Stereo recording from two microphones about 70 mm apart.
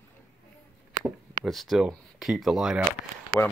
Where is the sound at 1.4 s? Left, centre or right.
Centre.